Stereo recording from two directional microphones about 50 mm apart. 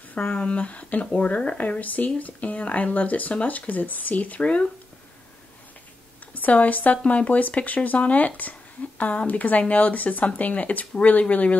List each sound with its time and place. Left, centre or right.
0.1 s speech: left
6.3 s speech: left